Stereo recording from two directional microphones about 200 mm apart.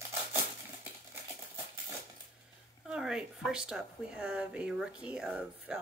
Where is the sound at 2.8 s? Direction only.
5° right (ahead or behind).